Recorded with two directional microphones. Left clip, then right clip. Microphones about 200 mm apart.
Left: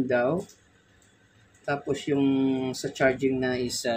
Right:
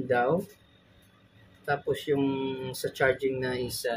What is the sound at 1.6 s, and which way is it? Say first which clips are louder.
Speech: even; 30° left (ahead or behind).